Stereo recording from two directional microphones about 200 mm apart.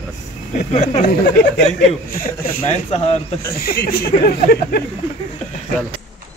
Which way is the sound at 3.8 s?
50° left (ahead or behind).